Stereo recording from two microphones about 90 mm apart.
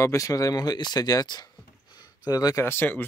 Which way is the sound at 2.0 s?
45° left (ahead or behind).